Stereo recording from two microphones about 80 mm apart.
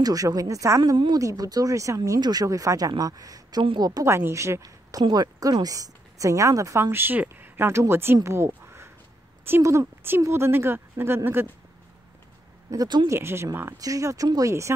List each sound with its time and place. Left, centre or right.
0.0 s a woman's voice: right
2.1 s a woman's voice: right
4.0 s a woman's voice: right
5.0 s a woman's voice: right
8.6 s a sound: right
9.6 s a woman's voice: right
12.7 s speech: right
13.1 s a woman's voice: right
13.7 s a woman's voice: right